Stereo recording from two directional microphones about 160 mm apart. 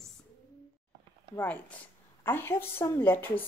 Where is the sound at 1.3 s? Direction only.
10° left (ahead or behind).